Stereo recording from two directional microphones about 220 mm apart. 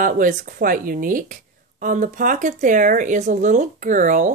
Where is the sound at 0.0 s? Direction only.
35° right (ahead or behind).